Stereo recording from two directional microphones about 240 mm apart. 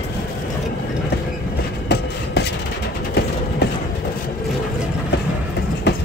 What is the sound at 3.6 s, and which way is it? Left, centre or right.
Vehicle, left.